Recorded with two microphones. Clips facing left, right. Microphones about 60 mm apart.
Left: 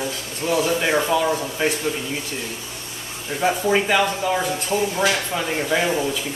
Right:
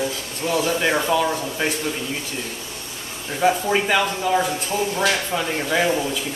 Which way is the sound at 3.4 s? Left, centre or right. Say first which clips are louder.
Even; centre.